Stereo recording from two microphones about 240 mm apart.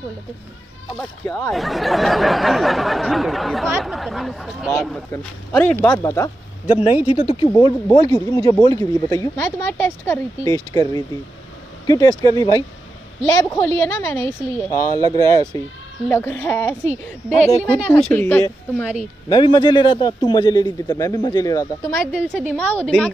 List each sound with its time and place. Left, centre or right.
0.9 s a man's voice: centre
1.5 s a sound: centre
5.1 s a man's voice: centre
7.1 s a man's voice: left
17.7 s a man's voice: centre
22.0 s a sound: centre